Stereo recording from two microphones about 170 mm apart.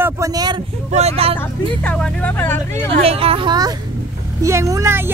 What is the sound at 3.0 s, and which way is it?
A woman's voice, 35° right (ahead or behind).